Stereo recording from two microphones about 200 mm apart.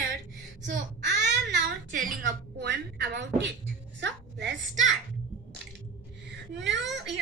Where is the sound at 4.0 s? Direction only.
60° right (ahead or behind).